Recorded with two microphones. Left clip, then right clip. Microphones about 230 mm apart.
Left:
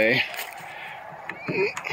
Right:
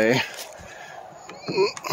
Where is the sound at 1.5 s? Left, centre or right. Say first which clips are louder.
Right 3 dB; right.